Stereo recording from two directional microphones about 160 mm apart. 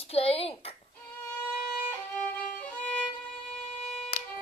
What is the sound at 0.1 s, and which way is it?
Speech, 40° left (ahead or behind).